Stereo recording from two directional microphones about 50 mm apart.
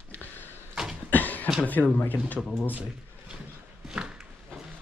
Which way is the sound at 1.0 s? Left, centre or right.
Left.